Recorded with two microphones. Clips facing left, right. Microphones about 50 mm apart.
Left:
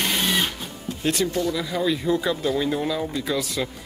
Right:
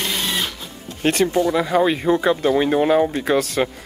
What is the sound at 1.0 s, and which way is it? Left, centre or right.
Speech, right.